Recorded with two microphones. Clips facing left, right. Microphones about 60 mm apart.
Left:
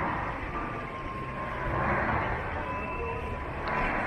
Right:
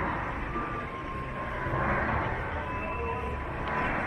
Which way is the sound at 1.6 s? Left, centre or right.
Centre.